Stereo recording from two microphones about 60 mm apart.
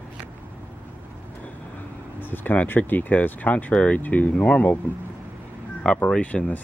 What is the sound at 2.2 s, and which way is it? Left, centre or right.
Speech, left.